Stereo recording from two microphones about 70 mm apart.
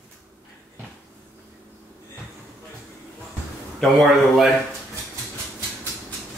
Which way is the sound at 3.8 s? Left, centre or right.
Centre.